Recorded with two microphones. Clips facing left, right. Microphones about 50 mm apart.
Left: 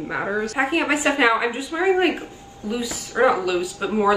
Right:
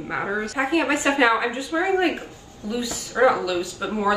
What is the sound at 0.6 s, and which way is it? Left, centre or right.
Speech, left.